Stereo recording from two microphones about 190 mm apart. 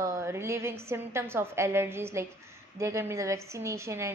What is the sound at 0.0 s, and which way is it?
A woman's voice, 15° right (ahead or behind).